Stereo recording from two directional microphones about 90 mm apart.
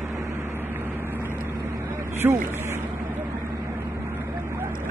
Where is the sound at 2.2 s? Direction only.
25° right (ahead or behind).